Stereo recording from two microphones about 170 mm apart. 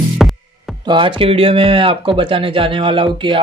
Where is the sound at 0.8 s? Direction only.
30° right (ahead or behind).